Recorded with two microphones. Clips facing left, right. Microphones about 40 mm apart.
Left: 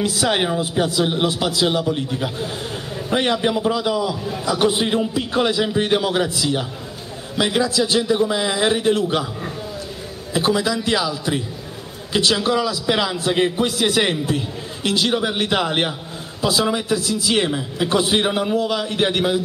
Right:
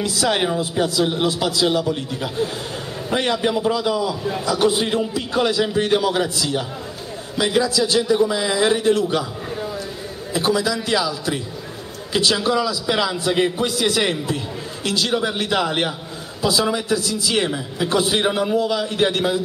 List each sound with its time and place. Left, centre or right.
0.0 s a man's voice: centre
10.4 s a man's voice: centre
12.4 s a man's voice: centre